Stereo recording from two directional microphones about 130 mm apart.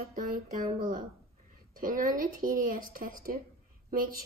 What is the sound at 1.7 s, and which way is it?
Speech, 90° right.